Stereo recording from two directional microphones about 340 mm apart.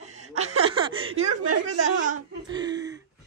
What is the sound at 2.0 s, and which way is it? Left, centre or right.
Speech, centre.